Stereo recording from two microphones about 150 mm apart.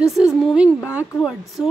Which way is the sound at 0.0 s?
5° right (ahead or behind).